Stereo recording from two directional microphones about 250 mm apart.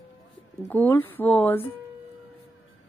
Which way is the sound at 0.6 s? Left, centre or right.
Centre.